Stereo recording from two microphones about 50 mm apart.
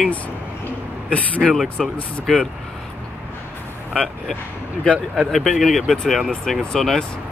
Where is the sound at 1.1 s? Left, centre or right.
Left.